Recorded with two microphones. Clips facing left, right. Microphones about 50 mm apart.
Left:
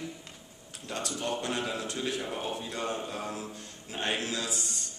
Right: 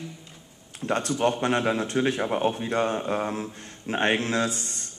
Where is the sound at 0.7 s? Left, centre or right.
Right.